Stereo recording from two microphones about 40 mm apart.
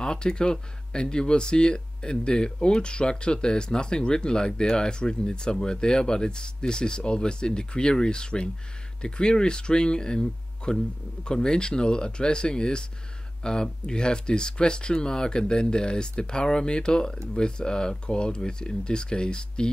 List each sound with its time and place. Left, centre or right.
0.0 s speech: centre